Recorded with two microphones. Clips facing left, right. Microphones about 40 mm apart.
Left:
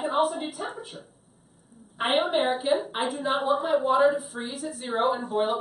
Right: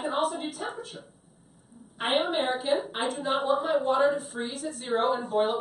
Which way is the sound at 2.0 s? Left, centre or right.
Centre.